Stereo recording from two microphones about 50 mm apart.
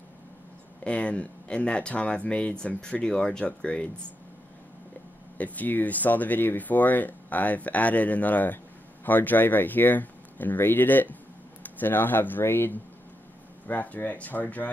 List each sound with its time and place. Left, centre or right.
0.8 s speech: left
5.4 s speech: left
13.7 s speech: left